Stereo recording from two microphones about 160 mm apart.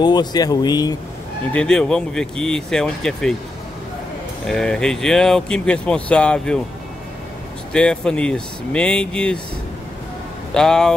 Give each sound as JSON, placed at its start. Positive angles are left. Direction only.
{"t": 0.0, "sound": "speech", "side_deg": 25}
{"t": 1.5, "sound": "speech", "side_deg": 5}
{"t": 4.5, "sound": "speech", "side_deg": 5}
{"t": 7.7, "sound": "speech", "side_deg": 5}
{"t": 10.5, "sound": "speech", "side_deg": 5}